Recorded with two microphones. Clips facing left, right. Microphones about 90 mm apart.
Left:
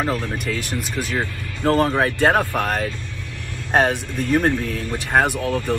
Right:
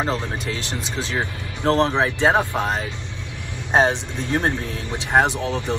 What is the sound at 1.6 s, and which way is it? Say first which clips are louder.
Speech: left 1 dB; 20° right (ahead or behind).